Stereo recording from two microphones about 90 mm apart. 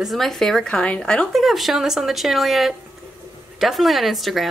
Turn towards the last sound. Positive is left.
turn(degrees=0)  # may be behind; listen again after turning